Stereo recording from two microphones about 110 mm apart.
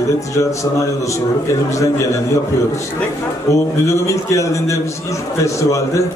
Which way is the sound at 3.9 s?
30° left (ahead or behind).